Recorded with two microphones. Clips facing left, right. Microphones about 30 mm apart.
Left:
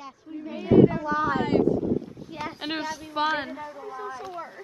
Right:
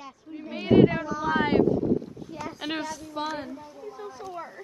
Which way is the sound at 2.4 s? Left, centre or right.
Left.